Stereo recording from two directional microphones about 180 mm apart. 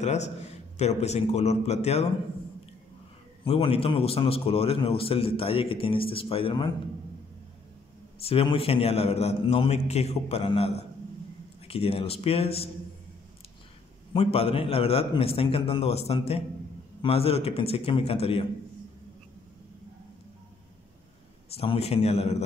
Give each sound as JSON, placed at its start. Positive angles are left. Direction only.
{"t": 0.0, "sound": "a man's voice", "side_deg": 40}
{"t": 3.4, "sound": "a man's voice", "side_deg": 30}
{"t": 8.2, "sound": "a man's voice", "side_deg": 30}
{"t": 14.1, "sound": "a man's voice", "side_deg": 35}
{"t": 21.5, "sound": "a man's voice", "side_deg": 35}